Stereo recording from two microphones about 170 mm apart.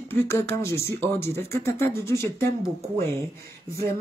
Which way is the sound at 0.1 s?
15° left (ahead or behind).